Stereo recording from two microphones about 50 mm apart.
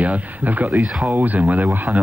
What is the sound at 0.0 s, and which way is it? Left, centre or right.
Speech, right.